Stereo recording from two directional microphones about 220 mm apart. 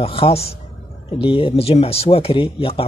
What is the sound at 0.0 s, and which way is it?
Speech, 25° left (ahead or behind).